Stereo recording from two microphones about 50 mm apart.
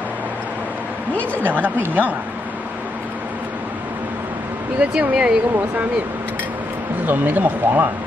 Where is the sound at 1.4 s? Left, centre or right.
Right.